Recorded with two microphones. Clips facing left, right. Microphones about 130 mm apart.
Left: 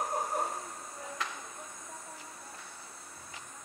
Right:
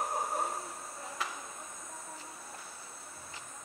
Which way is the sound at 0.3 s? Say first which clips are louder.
Left 1 dB; centre (ahead or behind).